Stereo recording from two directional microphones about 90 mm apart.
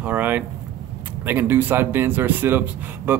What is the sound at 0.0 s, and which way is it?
Speech, 20° right (ahead or behind).